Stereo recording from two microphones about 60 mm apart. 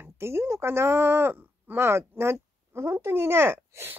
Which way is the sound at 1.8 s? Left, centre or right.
Right.